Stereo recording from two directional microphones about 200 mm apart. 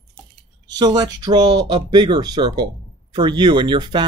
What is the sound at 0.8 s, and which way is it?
Speech, 20° right (ahead or behind).